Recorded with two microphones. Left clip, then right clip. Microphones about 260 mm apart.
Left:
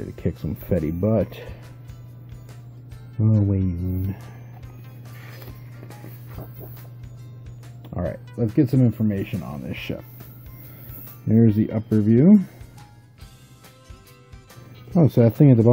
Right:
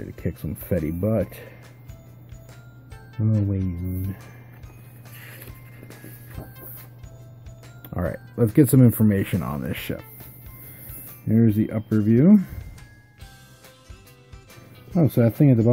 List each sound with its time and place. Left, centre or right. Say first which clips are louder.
0.0 s speech: left 3 dB; centre
3.2 s speech: left 3 dB; centre
7.8 s speech: even; centre
9.6 s speech: right 1 dB; centre
11.2 s speech: left 2 dB; centre
14.9 s speech: left 3 dB; centre